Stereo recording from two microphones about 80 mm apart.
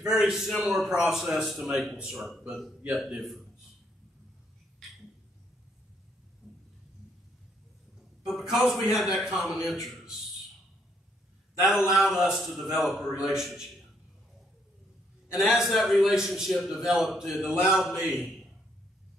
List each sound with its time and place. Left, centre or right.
0.1 s a man's voice: centre
6.4 s a sound: centre
8.2 s a man's voice: centre
11.6 s a man's voice: centre
15.3 s a man's voice: centre